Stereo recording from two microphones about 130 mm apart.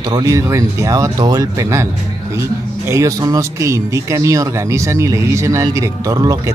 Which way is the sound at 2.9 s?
25° right (ahead or behind).